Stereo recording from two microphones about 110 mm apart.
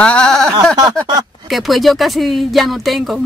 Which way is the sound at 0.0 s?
10° left (ahead or behind).